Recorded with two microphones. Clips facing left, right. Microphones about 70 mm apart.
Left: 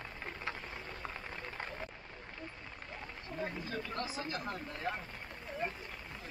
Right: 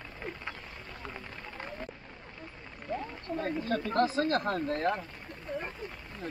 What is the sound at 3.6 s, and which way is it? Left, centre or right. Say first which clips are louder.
Speech: right 11 dB; right.